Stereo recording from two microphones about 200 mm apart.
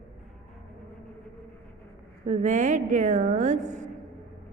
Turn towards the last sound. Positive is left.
turn(degrees=-35)  # may be behind; listen again after turning